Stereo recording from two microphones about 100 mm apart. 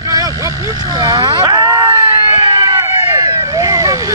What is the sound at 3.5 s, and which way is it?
Vehicle, 35° right (ahead or behind).